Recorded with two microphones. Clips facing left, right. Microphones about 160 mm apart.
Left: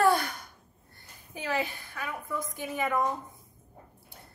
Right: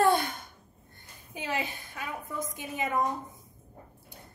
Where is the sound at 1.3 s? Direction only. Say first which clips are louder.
Left 2 dB; 20° right (ahead or behind).